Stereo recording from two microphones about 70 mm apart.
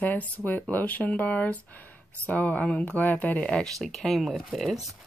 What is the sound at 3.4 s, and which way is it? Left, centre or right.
Speech, centre.